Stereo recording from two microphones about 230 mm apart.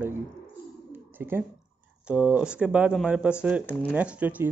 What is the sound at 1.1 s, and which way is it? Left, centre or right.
Speech, centre.